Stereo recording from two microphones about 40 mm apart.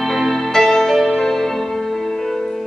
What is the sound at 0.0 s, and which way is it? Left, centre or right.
Music, centre.